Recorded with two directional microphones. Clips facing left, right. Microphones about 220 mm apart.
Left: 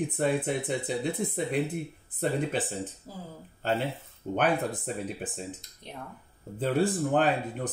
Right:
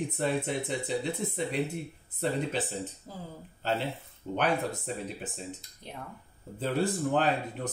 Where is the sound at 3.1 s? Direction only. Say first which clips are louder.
Left 1 dB; 5° left (ahead or behind).